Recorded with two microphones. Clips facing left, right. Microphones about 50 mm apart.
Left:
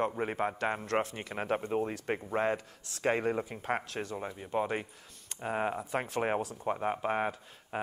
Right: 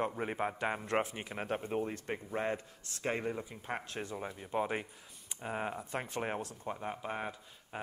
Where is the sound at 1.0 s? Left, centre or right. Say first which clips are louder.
Left 2 dB; centre.